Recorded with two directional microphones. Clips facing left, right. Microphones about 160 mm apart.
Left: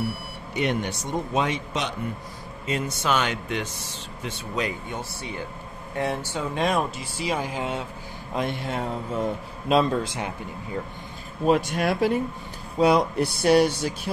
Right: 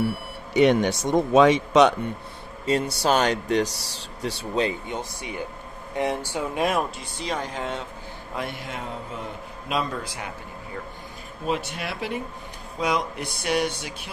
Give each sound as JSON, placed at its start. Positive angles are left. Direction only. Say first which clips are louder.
{"t": 0.6, "sound": "a man's voice", "louder": "right 8 dB", "side_deg": -90}
{"t": 2.6, "sound": "speech", "louder": "right 4 dB", "side_deg": -35}
{"t": 8.4, "sound": "a man's voice", "louder": "left 5 dB", "side_deg": 25}
{"t": 11.4, "sound": "speech", "louder": "left 7 dB", "side_deg": 45}